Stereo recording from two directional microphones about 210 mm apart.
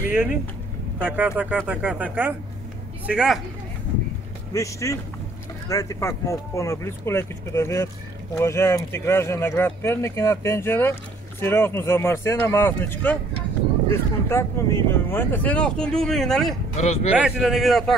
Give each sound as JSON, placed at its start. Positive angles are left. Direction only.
{"t": 1.0, "sound": "speech", "side_deg": -10}
{"t": 4.6, "sound": "speech", "side_deg": 15}
{"t": 16.7, "sound": "speech", "side_deg": 30}
{"t": 17.1, "sound": "speech", "side_deg": -5}